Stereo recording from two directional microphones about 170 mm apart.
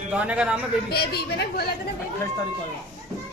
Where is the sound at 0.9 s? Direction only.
70° left (ahead or behind).